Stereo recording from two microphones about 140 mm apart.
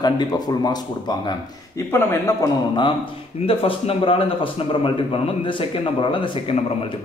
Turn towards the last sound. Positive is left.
turn(degrees=35)  # may be behind; listen again after turning